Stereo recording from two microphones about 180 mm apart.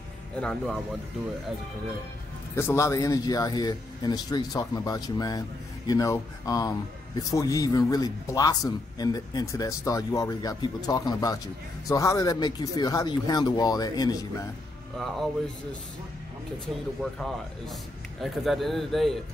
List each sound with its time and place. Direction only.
0.4 s speech: 5° left (ahead or behind)
2.5 s a man's voice: 15° left (ahead or behind)
15.0 s speech: centre (ahead or behind)
17.0 s speech: centre (ahead or behind)